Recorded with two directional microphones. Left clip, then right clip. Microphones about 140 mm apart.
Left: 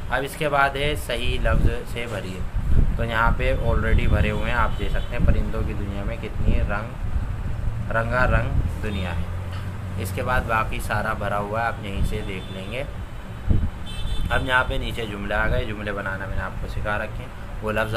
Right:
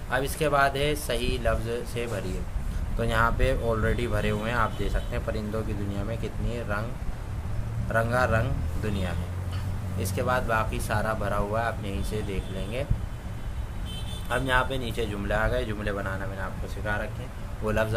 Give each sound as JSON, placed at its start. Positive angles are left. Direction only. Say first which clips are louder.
{"t": 0.1, "sound": "speech", "louder": "left 2 dB", "side_deg": -50}
{"t": 7.9, "sound": "a man's voice", "louder": "left 2 dB", "side_deg": -40}
{"t": 14.3, "sound": "speech", "louder": "left 4 dB", "side_deg": -40}
{"t": 16.8, "sound": "speech", "louder": "left 4 dB", "side_deg": -25}